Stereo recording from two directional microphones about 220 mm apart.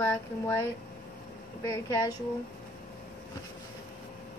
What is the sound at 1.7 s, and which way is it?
Speech, 15° left (ahead or behind).